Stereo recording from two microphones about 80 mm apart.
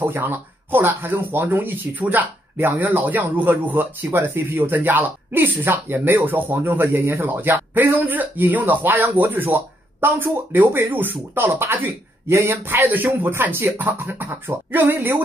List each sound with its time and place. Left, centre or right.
0.0 s speech: right